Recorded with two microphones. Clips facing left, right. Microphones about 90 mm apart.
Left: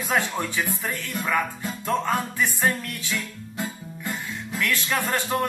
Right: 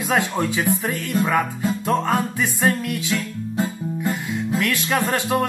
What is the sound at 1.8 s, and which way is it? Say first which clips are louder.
Music: right 2 dB; 15° right (ahead or behind).